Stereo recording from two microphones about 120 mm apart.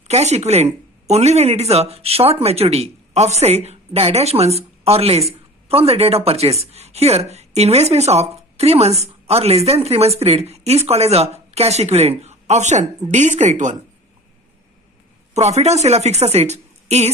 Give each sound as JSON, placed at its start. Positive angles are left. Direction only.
{"t": 0.1, "sound": "speech", "side_deg": -70}
{"t": 15.3, "sound": "speech", "side_deg": -65}